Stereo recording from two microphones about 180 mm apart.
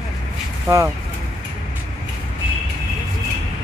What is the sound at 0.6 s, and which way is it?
Speech, 15° right (ahead or behind).